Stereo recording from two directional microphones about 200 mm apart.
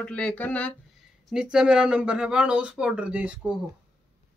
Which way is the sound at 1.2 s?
5° right (ahead or behind).